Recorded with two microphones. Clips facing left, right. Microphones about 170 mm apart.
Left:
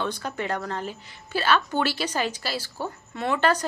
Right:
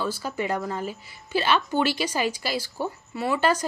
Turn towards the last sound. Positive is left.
turn(degrees=-10)  # may be behind; listen again after turning